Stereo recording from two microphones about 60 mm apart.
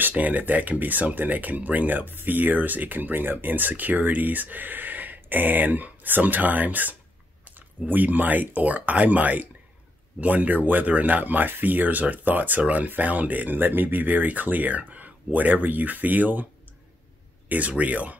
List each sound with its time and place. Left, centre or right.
0.1 s speech: right
17.5 s speech: right